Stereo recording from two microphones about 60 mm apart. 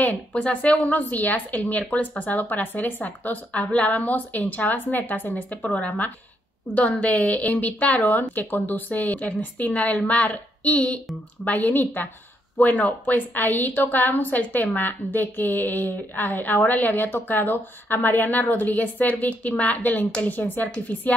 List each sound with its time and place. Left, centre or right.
0.0 s a woman's voice: left